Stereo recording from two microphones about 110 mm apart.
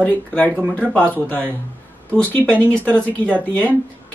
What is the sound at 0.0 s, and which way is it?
Speech, 15° left (ahead or behind).